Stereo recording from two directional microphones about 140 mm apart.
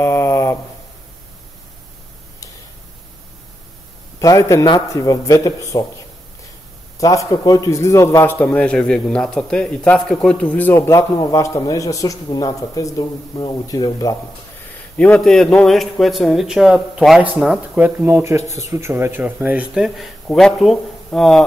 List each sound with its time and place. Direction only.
0.0 s a sound: 20° left (ahead or behind)
4.2 s speech: 25° left (ahead or behind)
7.0 s a man's voice: 25° left (ahead or behind)
11.1 s speech: 25° left (ahead or behind)
15.0 s a man's voice: 5° left (ahead or behind)